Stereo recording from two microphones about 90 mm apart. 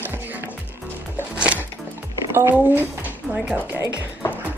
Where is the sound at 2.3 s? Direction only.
20° right (ahead or behind).